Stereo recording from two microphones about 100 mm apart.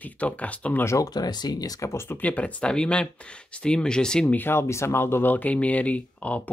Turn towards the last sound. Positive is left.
turn(degrees=15)  # may be behind; listen again after turning